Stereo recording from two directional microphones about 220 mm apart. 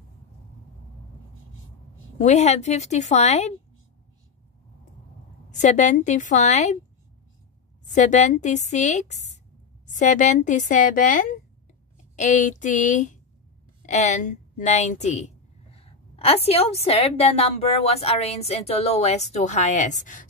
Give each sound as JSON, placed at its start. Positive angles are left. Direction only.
{"t": 2.1, "sound": "a woman's voice", "side_deg": 30}
{"t": 5.6, "sound": "a woman's voice", "side_deg": 30}
{"t": 7.9, "sound": "a woman's voice", "side_deg": 35}